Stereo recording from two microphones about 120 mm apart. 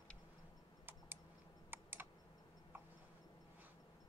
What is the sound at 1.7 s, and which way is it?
Computer keyboard, 15° right (ahead or behind).